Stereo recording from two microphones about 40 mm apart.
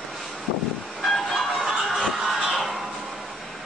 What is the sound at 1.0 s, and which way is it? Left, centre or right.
Music, centre.